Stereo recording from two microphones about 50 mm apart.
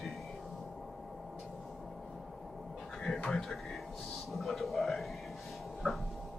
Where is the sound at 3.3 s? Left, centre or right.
Centre.